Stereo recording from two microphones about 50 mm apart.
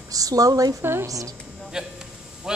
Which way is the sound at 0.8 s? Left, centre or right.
Right.